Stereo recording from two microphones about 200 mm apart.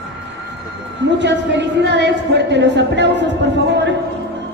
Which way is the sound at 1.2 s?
60° right (ahead or behind).